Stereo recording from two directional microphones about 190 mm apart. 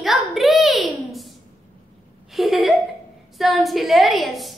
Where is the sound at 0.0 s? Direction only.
Centre (ahead or behind).